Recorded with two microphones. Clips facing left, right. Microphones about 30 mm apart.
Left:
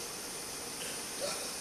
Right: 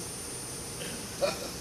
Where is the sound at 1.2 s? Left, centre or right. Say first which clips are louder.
Right 9 dB; right.